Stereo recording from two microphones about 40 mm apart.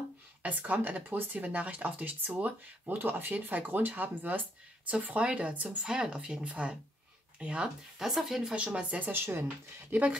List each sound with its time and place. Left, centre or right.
0.4 s speech: right
5.0 s speech: right
5.6 s speech: right
5.9 s speech: right
8.0 s speech: centre
8.7 s speech: right
9.1 s speech: right
9.8 s speech: right